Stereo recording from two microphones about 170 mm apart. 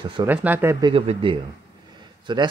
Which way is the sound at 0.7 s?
30° right (ahead or behind).